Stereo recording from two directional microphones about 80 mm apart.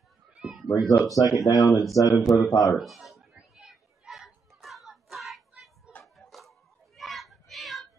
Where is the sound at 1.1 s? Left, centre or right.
Left.